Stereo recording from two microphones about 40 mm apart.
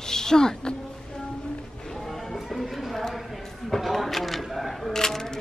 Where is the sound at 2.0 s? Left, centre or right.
Centre.